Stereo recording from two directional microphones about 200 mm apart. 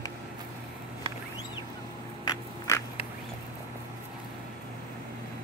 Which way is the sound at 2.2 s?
15° left (ahead or behind).